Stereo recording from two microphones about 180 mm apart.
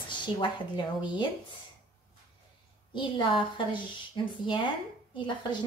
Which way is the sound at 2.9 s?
25° left (ahead or behind).